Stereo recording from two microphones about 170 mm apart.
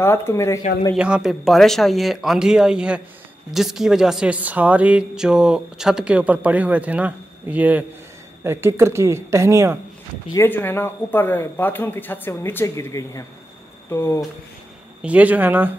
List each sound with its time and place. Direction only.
0.0 s speech: 15° left (ahead or behind)
0.9 s speech: 5° right (ahead or behind)
10.3 s speech: 10° left (ahead or behind)
15.0 s speech: 10° right (ahead or behind)